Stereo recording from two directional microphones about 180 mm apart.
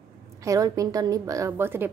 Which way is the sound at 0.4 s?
20° right (ahead or behind).